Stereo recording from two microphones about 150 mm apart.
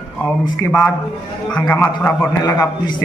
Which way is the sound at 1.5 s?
10° left (ahead or behind).